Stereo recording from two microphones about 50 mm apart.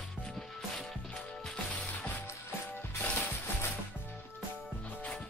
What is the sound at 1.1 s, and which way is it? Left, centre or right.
Mechanisms, centre.